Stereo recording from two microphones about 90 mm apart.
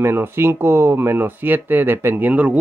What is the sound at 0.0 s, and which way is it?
Speech, 25° right (ahead or behind).